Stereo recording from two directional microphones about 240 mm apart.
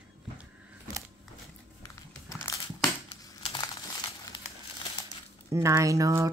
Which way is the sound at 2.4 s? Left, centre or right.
Centre.